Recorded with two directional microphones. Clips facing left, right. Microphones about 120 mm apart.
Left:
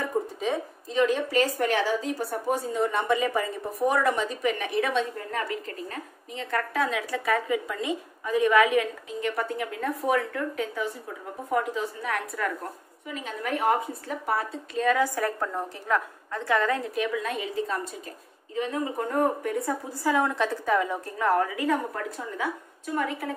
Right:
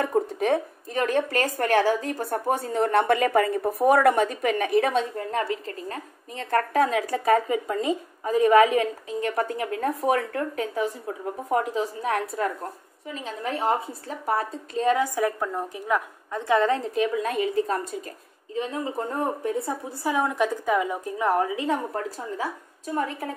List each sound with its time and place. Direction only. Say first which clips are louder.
0.0 s a woman's voice: right 4 dB; 60° right (ahead or behind); by 15.0 s 30° right (ahead or behind)
15.1 s a woman's voice: right 3 dB; 10° right (ahead or behind)
16.3 s a woman's voice: right 4 dB; 20° right (ahead or behind); by 17.7 s 45° right (ahead or behind)
18.5 s a woman's voice: even; 30° right (ahead or behind)